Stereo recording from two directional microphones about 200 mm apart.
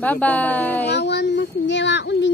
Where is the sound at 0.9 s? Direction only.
60° left (ahead or behind).